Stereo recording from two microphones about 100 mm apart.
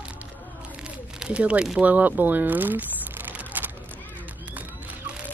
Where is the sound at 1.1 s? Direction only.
10° right (ahead or behind).